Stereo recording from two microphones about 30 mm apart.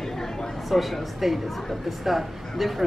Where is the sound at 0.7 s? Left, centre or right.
Centre.